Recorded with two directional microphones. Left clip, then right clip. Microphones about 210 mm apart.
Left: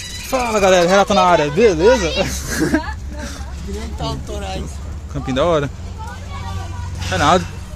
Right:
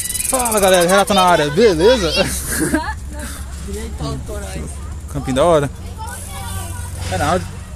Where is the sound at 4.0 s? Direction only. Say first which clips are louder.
Left 3 dB; 35° left (ahead or behind).